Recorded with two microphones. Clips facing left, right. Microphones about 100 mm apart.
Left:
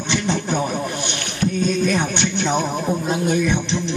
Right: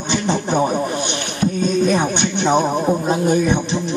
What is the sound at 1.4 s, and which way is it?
Music, 35° right (ahead or behind).